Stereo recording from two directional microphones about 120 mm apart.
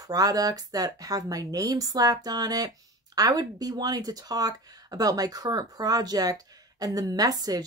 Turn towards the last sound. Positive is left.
turn(degrees=-30)  # may be behind; listen again after turning